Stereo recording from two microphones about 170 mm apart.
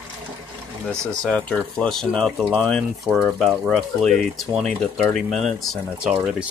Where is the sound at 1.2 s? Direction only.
5° left (ahead or behind).